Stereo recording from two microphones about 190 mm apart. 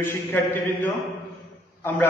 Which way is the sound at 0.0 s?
10° left (ahead or behind).